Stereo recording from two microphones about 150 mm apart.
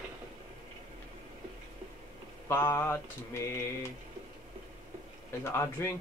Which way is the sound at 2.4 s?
15° left (ahead or behind).